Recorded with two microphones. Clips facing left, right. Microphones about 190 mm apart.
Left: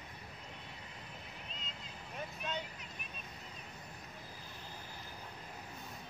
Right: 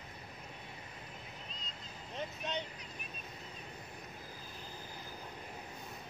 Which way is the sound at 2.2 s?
20° right (ahead or behind).